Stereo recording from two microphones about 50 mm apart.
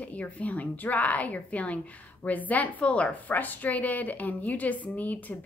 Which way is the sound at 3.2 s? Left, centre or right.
Left.